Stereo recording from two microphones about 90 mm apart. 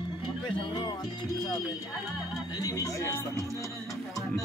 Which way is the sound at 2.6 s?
40° left (ahead or behind).